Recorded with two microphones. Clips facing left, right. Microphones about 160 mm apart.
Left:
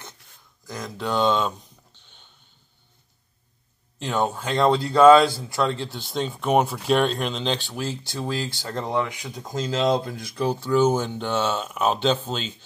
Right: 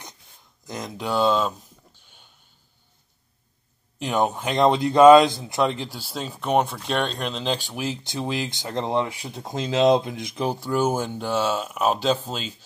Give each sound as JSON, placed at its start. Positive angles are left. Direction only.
{"t": 0.7, "sound": "speech", "side_deg": -20}
{"t": 4.0, "sound": "speech", "side_deg": -15}
{"t": 7.5, "sound": "speech", "side_deg": -15}